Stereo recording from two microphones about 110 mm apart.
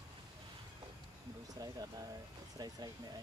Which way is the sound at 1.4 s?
35° right (ahead or behind).